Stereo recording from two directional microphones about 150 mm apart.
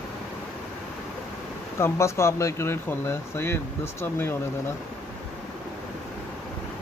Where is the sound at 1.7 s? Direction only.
15° left (ahead or behind).